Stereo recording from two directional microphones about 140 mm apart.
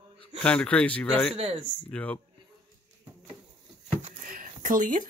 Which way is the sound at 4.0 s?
70° right (ahead or behind).